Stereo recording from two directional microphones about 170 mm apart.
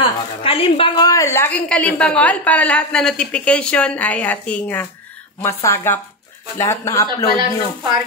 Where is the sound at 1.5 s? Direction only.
10° left (ahead or behind).